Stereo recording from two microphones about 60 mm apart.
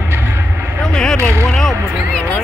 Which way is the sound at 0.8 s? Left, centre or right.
Centre.